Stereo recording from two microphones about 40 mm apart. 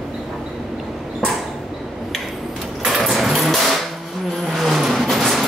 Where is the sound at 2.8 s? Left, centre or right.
Centre.